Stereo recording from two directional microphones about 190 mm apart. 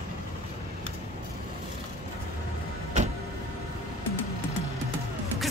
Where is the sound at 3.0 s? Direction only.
40° right (ahead or behind).